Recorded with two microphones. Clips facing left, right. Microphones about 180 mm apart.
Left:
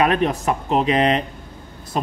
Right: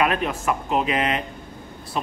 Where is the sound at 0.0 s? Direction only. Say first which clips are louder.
Left 4 dB; 35° left (ahead or behind).